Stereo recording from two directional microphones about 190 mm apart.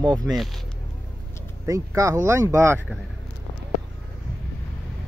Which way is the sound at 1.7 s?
15° right (ahead or behind).